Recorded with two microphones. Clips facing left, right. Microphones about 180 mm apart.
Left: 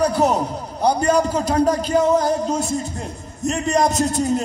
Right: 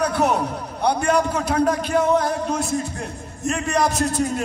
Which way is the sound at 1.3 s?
25° left (ahead or behind).